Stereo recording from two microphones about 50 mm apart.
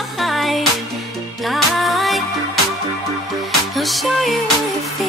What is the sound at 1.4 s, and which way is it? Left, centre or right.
Zing, centre.